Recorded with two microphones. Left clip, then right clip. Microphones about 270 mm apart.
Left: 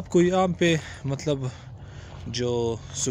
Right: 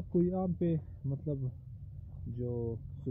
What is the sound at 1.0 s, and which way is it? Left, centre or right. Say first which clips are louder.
Speech: left 13 dB; left.